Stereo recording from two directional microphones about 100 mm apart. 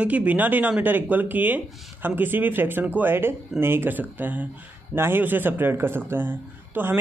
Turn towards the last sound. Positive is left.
turn(degrees=-20)  # may be behind; listen again after turning